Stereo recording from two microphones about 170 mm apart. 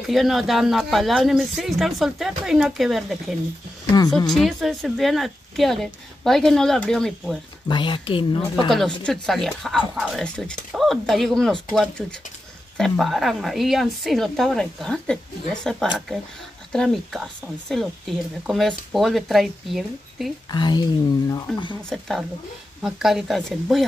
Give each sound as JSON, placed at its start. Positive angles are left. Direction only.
{"t": 0.0, "sound": "a woman's voice", "side_deg": 0}
{"t": 4.0, "sound": "speech", "side_deg": 25}
{"t": 4.3, "sound": "a woman's voice", "side_deg": 0}
{"t": 7.6, "sound": "speech", "side_deg": 30}
{"t": 8.6, "sound": "a woman's voice", "side_deg": 0}
{"t": 20.5, "sound": "speech", "side_deg": 25}
{"t": 21.8, "sound": "a woman's voice", "side_deg": 0}